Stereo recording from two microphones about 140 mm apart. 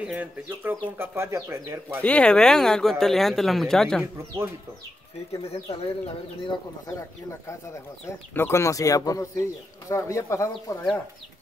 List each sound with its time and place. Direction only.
0.0 s speech: 10° right (ahead or behind)
2.0 s speech: 10° left (ahead or behind)
5.5 s speech: 45° left (ahead or behind)
7.0 s speech: 20° left (ahead or behind)